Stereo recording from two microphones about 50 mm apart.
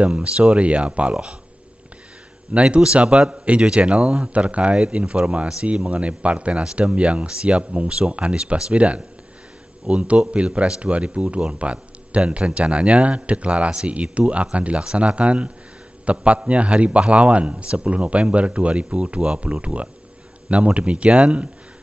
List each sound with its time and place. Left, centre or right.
0.0 s a man's voice: right
2.8 s a man's voice: right